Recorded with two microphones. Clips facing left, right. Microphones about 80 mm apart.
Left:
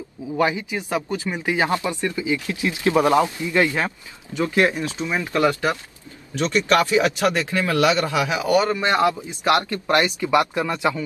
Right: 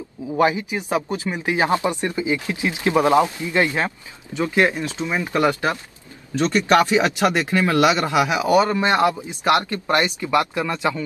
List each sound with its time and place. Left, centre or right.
0.4 s speech: right
10.2 s speech: centre